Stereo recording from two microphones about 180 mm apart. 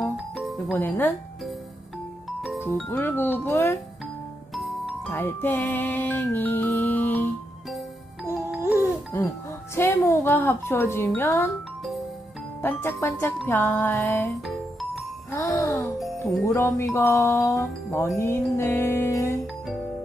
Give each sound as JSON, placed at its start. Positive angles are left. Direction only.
{"t": 0.0, "sound": "music", "side_deg": 0}
{"t": 2.6, "sound": "music", "side_deg": 10}
{"t": 4.6, "sound": "music", "side_deg": 0}
{"t": 5.1, "sound": "music", "side_deg": 10}
{"t": 8.5, "sound": "music", "side_deg": -5}
{"t": 9.1, "sound": "music", "side_deg": 15}
{"t": 12.6, "sound": "music", "side_deg": 15}
{"t": 14.4, "sound": "music", "side_deg": 0}
{"t": 15.3, "sound": "music", "side_deg": 15}